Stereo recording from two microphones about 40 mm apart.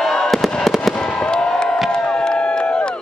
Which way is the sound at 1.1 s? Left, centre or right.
Left.